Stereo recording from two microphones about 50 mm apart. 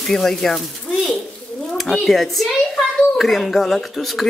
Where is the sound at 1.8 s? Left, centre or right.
Centre.